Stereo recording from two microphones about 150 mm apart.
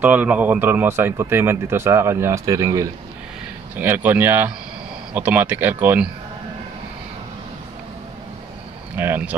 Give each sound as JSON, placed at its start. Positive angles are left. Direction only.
{"t": 0.0, "sound": "speech", "side_deg": -10}
{"t": 8.9, "sound": "speech", "side_deg": -15}